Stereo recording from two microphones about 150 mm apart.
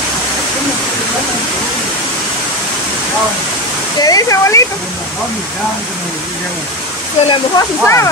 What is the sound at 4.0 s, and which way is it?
Waterfall, 25° left (ahead or behind).